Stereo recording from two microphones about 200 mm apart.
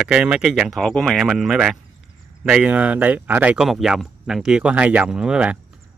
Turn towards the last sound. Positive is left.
turn(degrees=-5)  # may be behind; listen again after turning